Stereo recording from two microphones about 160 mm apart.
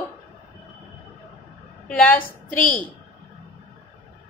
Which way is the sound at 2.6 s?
55° left (ahead or behind).